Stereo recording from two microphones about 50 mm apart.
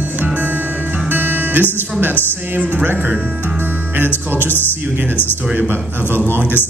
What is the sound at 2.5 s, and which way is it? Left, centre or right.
Speech, right.